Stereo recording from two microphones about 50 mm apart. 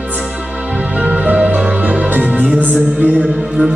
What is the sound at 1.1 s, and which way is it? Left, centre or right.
Music, right.